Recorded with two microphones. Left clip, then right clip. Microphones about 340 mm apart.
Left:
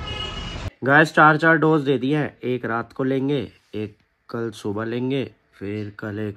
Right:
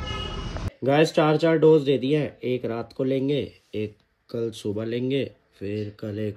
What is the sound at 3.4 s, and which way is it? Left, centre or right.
Speech, centre.